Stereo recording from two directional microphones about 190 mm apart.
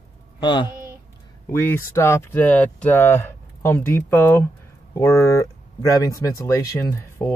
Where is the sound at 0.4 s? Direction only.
25° left (ahead or behind).